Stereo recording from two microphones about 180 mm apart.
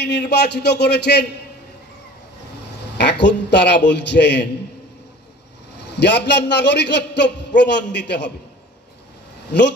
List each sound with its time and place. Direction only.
0.0 s a man's voice: 70° left (ahead or behind)
3.0 s a man's voice: 70° left (ahead or behind)
5.9 s a man's voice: 70° left (ahead or behind)